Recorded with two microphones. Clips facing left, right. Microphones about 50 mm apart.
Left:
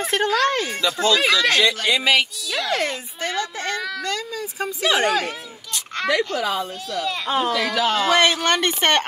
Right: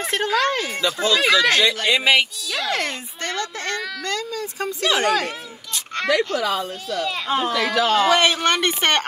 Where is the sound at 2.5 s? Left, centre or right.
Centre.